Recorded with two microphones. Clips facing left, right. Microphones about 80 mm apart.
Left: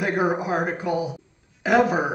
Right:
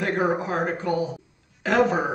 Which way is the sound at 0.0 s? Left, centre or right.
Centre.